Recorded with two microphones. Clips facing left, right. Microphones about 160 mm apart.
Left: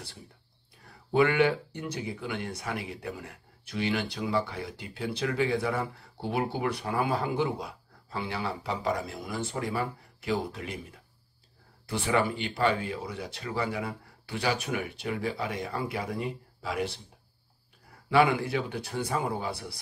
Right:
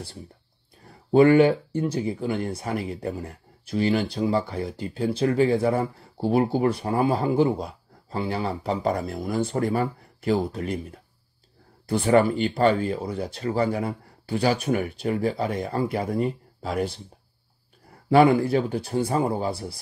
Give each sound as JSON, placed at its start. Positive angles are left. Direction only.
{"t": 1.1, "sound": "speech", "side_deg": -30}
{"t": 18.2, "sound": "speech", "side_deg": -35}